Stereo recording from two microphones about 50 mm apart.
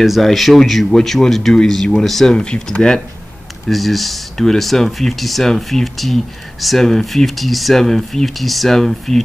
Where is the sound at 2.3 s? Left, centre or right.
Centre.